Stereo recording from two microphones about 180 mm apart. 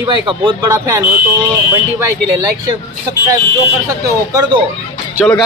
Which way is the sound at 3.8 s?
15° right (ahead or behind).